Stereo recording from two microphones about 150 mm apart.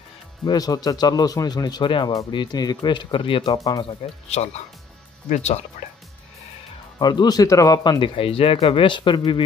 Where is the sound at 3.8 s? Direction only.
45° left (ahead or behind).